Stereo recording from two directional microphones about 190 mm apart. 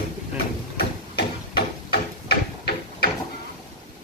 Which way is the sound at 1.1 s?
60° left (ahead or behind).